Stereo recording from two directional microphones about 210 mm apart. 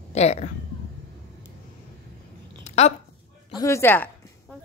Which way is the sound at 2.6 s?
30° left (ahead or behind).